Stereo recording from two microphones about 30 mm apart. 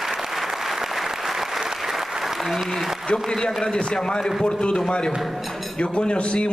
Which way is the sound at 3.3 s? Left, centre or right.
Left.